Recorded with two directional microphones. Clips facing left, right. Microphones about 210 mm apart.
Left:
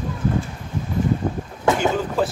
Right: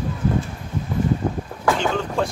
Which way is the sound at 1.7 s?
20° left (ahead or behind).